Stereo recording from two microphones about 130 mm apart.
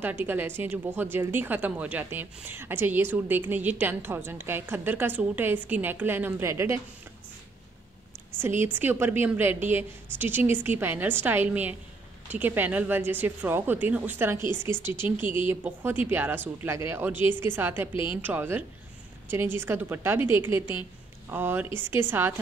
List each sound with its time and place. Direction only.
0.0 s a woman's voice: 15° right (ahead or behind)
8.4 s a woman's voice: 15° right (ahead or behind)